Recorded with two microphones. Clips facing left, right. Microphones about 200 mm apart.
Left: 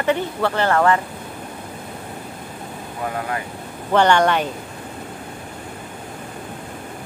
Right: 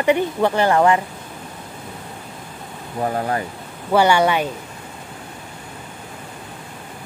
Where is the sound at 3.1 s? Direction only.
35° right (ahead or behind).